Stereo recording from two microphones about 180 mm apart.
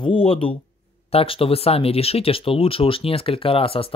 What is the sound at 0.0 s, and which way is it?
Speech, 30° left (ahead or behind).